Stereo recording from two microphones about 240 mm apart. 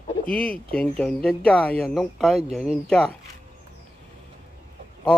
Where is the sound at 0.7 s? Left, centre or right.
Centre.